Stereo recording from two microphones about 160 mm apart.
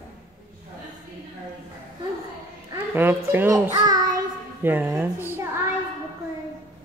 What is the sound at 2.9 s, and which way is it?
A child's voice, 15° right (ahead or behind).